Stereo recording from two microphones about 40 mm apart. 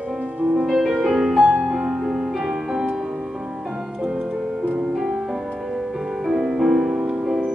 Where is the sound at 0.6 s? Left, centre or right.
Centre.